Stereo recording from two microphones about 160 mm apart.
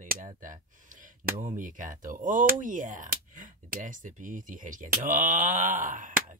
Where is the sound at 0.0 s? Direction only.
55° right (ahead or behind).